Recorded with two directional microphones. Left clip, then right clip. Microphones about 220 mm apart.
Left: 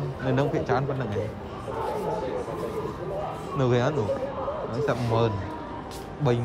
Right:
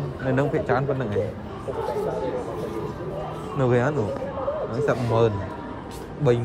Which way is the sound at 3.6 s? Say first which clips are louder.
Right 3 dB; 15° left (ahead or behind).